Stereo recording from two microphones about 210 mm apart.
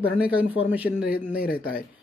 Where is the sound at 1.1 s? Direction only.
45° left (ahead or behind).